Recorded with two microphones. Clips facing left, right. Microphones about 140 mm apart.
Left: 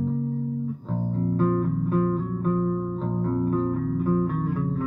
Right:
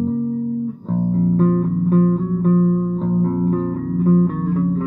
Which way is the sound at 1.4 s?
35° right (ahead or behind).